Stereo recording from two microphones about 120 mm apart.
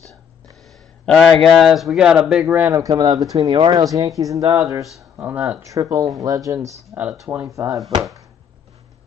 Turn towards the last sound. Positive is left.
turn(degrees=-25)  # may be behind; listen again after turning